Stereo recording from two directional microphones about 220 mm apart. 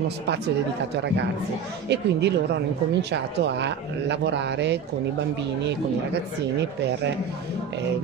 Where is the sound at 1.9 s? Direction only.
50° right (ahead or behind).